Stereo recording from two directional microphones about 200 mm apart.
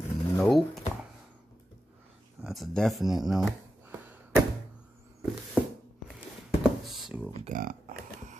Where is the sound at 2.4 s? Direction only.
Centre (ahead or behind).